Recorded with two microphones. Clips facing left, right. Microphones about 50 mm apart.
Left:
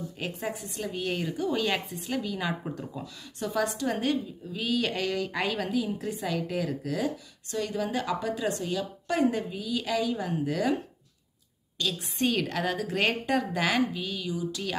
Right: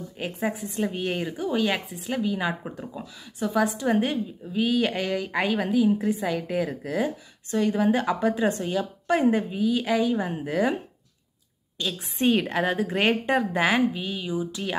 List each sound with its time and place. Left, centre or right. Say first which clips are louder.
0.2 s a woman's voice: right 6 dB; centre
11.8 s a woman's voice: right 3 dB; centre